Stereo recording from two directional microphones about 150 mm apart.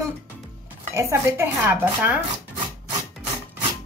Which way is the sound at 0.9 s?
20° right (ahead or behind).